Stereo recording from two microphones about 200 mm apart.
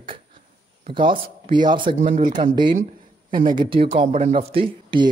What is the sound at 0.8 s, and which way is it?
Speech, 25° right (ahead or behind).